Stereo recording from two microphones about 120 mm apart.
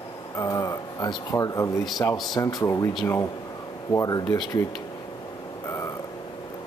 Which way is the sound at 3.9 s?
30° left (ahead or behind).